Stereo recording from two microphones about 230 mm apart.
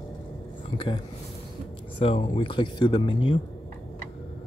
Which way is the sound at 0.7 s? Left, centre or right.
Left.